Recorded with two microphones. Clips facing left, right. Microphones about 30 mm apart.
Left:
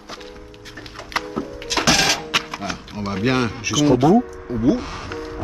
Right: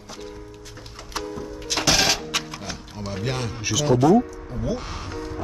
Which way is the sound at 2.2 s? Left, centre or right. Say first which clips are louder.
Left 5 dB; left.